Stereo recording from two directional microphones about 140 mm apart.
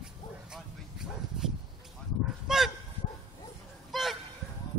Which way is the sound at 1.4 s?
5° right (ahead or behind).